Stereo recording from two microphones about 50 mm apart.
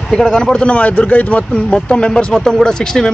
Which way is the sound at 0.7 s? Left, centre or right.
Left.